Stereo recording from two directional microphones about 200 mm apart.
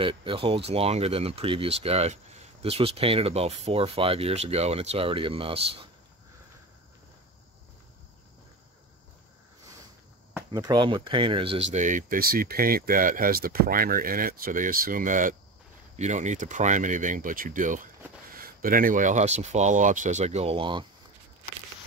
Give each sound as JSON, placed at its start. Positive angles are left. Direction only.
{"t": 0.0, "sound": "speech", "side_deg": -25}
{"t": 10.3, "sound": "speech", "side_deg": -20}
{"t": 11.7, "sound": "speech", "side_deg": -40}